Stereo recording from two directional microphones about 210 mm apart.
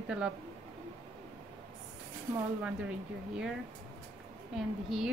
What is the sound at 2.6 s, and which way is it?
Speech, 5° right (ahead or behind).